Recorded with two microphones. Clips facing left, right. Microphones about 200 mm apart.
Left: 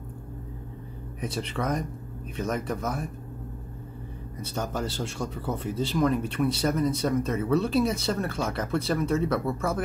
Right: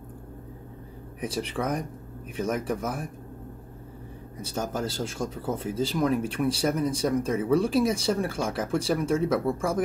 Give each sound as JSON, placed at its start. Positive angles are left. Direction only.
{"t": 1.2, "sound": "a man's voice", "side_deg": -10}
{"t": 4.6, "sound": "a man's voice", "side_deg": -5}